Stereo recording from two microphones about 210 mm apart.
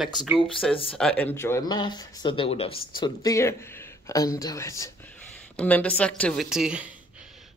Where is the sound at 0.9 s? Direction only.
5° left (ahead or behind).